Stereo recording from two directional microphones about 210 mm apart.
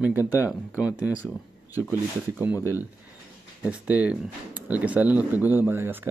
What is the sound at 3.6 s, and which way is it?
Speech, 5° right (ahead or behind).